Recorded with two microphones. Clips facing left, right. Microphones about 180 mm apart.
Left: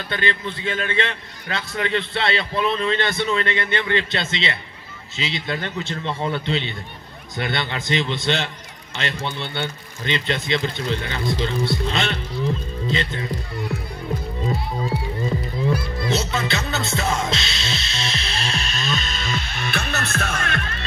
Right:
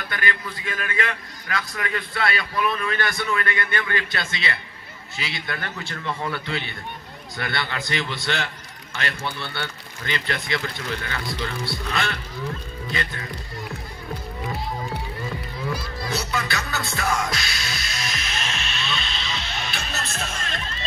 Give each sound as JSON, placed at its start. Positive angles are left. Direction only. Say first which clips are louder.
{"t": 0.1, "sound": "a man's voice", "louder": "left 4 dB", "side_deg": 25}
{"t": 16.1, "sound": "music", "louder": "left 4 dB", "side_deg": 25}